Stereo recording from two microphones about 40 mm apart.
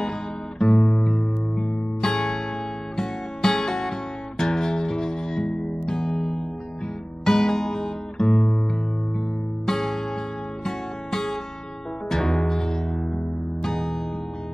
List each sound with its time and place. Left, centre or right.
0.6 s guitar: centre
1.6 s music: centre
9.7 s music: centre